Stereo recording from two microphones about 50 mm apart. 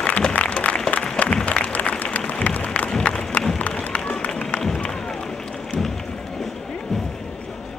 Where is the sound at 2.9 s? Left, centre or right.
Centre.